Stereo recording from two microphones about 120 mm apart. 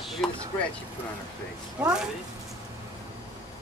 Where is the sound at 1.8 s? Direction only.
5° right (ahead or behind).